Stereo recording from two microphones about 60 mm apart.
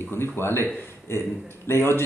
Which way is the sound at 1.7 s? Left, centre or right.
Left.